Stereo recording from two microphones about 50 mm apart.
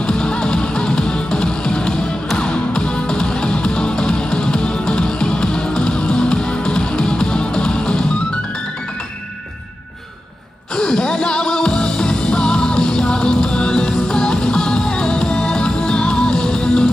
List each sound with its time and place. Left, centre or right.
0.0 s music: centre
10.8 s music: centre